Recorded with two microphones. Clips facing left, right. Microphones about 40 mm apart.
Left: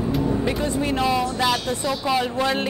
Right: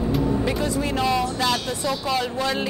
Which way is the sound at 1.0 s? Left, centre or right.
Centre.